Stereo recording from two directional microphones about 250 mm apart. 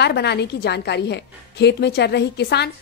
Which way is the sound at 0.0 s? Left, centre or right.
Left.